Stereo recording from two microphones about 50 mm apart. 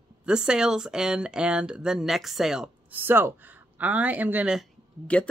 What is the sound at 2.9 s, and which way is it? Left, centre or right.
Speech, right.